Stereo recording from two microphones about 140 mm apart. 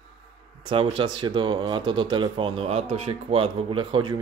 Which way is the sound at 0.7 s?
35° right (ahead or behind).